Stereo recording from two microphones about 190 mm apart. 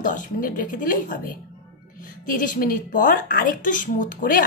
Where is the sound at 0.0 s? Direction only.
45° left (ahead or behind).